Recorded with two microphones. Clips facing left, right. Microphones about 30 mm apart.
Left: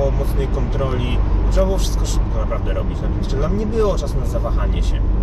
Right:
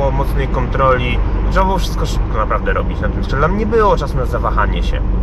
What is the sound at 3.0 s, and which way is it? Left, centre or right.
Speech, right.